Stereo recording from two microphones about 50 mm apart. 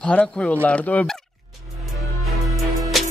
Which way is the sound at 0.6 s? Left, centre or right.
Left.